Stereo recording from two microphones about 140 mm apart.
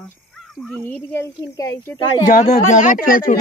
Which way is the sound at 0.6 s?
10° left (ahead or behind).